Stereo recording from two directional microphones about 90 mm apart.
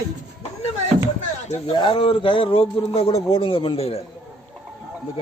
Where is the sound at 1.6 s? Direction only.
70° left (ahead or behind); by 4.0 s 90° left.